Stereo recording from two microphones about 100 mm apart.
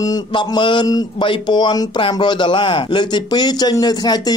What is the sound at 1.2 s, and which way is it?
Speech, 45° left (ahead or behind).